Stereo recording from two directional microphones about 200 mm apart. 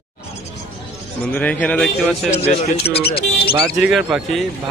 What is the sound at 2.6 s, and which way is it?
Speech, 30° left (ahead or behind).